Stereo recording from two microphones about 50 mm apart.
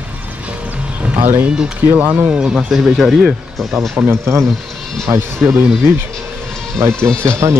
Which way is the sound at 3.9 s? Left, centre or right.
Right.